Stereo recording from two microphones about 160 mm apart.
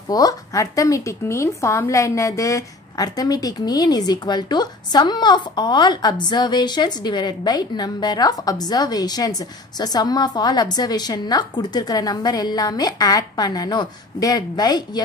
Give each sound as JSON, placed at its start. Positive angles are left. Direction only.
{"t": 0.1, "sound": "a woman's voice", "side_deg": 20}